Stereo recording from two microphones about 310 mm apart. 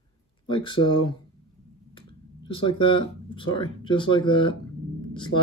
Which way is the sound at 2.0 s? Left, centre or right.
Centre.